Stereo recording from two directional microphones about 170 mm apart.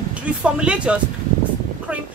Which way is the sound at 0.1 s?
5° right (ahead or behind).